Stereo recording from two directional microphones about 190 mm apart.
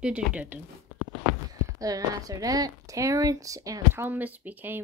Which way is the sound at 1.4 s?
20° right (ahead or behind).